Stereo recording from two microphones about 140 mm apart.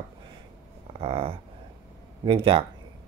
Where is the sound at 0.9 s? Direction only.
45° right (ahead or behind).